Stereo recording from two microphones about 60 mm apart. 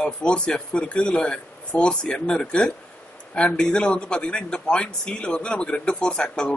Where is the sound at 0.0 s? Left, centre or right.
Centre.